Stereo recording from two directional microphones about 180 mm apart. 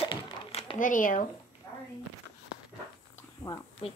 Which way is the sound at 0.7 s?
45° left (ahead or behind).